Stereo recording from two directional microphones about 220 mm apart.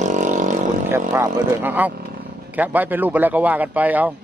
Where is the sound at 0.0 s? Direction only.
35° right (ahead or behind).